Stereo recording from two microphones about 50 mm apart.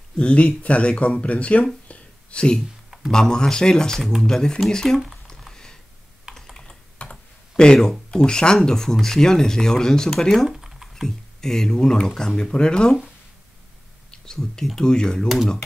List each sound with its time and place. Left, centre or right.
0.2 s speech: left
1.9 s a sound: left
3.1 s speech: centre
4.9 s a sound: centre
5.5 s typing: centre
7.0 s computer keyboard: centre
8.1 s speech: centre
10.5 s typing: centre
11.0 s speech: centre
14.2 s speech: centre
15.2 s speech: centre